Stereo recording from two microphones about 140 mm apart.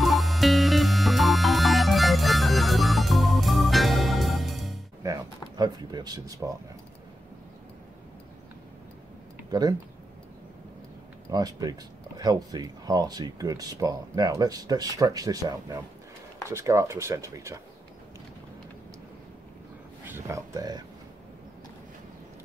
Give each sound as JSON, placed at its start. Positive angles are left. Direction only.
{"t": 0.0, "sound": "music", "side_deg": 0}
{"t": 5.0, "sound": "a sound", "side_deg": -30}
{"t": 9.5, "sound": "speech", "side_deg": -30}
{"t": 11.2, "sound": "speech", "side_deg": -30}
{"t": 20.1, "sound": "speech", "side_deg": -20}